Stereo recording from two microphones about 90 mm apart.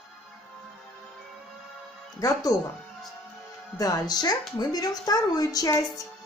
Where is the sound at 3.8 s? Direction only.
45° left (ahead or behind).